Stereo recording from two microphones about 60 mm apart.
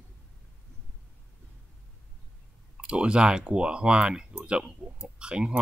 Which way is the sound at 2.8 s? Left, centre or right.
Centre.